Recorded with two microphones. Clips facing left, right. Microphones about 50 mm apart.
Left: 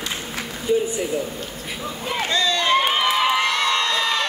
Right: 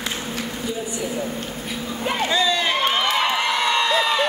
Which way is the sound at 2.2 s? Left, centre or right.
Centre.